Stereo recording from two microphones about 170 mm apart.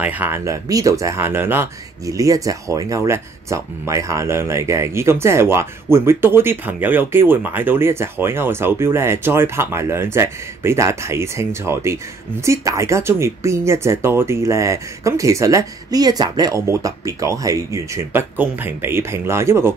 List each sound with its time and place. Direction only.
0.0 s speech: 10° right (ahead or behind)